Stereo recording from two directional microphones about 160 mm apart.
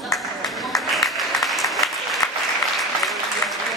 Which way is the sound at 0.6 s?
Centre (ahead or behind).